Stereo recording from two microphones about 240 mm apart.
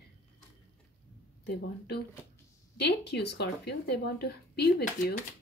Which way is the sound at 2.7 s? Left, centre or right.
Left.